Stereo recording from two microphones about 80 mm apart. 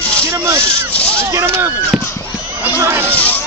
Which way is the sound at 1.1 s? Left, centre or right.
Right.